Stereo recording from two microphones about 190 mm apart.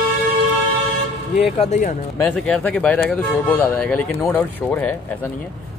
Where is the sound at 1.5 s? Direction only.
35° left (ahead or behind).